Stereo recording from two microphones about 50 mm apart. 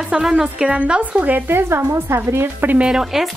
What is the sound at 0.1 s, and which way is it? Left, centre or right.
Speech, centre.